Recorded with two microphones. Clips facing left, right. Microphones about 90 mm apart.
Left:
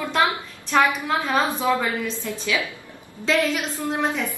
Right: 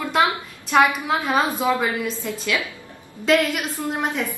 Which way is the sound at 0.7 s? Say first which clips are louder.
Right 2 dB; 10° right (ahead or behind).